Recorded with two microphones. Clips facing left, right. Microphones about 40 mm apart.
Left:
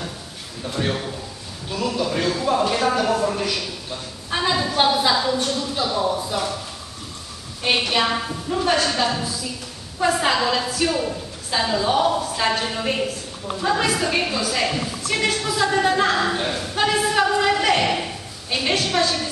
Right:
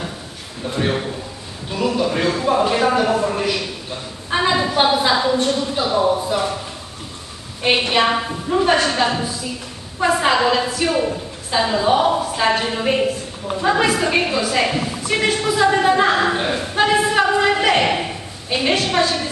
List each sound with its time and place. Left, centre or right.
0.7 s a man's voice: centre
7.6 s a woman's voice: centre